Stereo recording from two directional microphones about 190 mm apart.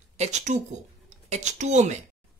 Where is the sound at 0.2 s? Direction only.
40° right (ahead or behind).